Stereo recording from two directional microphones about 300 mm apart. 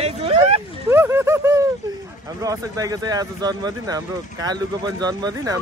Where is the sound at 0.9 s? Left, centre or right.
Centre.